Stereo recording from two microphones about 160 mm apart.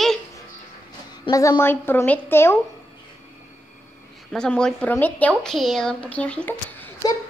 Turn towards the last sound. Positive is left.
turn(degrees=10)  # may be behind; listen again after turning